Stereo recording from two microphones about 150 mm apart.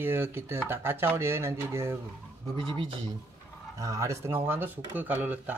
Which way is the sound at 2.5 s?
35° right (ahead or behind).